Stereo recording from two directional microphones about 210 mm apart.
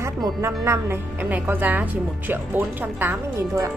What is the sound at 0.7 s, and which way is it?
Speech, 10° right (ahead or behind).